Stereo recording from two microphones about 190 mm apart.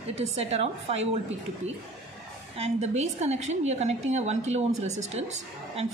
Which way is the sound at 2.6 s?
35° right (ahead or behind).